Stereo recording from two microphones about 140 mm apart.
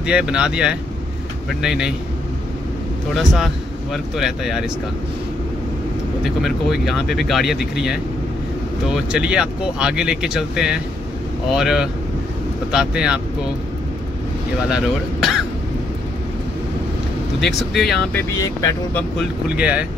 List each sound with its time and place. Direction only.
0.0 s speech: 5° right (ahead or behind)
3.2 s speech: centre (ahead or behind)
6.2 s speech: centre (ahead or behind)
17.4 s speech: centre (ahead or behind)
18.1 s speech: 25° left (ahead or behind)
19.5 s speech: 10° right (ahead or behind)